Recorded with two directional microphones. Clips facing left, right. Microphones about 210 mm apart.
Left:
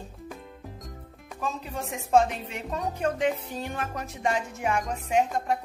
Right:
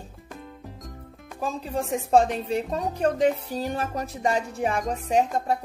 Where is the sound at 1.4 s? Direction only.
35° right (ahead or behind).